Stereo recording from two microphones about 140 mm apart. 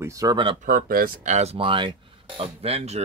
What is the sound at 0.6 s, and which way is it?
Speech, 80° right.